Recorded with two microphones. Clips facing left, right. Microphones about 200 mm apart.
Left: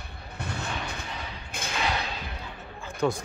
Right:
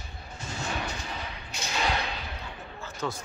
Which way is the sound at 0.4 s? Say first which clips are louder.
Even; 60° left (ahead or behind).